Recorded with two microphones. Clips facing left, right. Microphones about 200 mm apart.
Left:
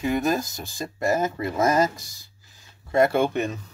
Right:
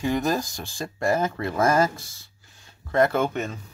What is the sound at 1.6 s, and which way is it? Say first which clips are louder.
Speech: even; 20° left (ahead or behind).